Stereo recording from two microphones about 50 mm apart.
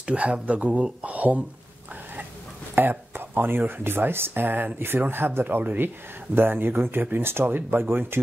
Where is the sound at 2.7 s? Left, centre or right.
Right.